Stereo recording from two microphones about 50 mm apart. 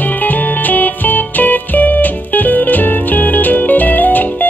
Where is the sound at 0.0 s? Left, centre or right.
Left.